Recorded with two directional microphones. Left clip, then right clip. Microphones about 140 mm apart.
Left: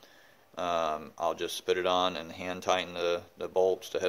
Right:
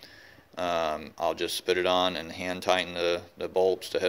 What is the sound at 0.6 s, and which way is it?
Speech, 20° right (ahead or behind).